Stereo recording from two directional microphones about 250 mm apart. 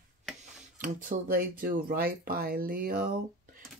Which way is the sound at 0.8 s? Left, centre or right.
Right.